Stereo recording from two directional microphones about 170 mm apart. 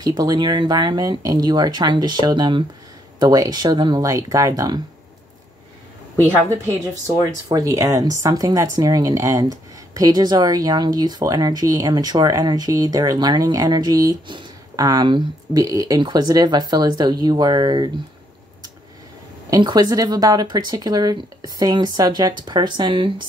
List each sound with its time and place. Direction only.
0.0 s speech: 25° right (ahead or behind)
7.1 s speech: 20° right (ahead or behind)
19.5 s speech: 25° right (ahead or behind)